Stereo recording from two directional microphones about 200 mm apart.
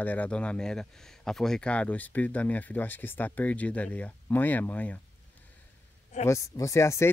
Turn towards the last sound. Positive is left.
turn(degrees=15)  # may be behind; listen again after turning